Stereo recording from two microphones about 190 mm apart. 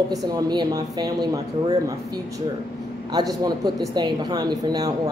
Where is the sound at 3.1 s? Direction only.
20° right (ahead or behind).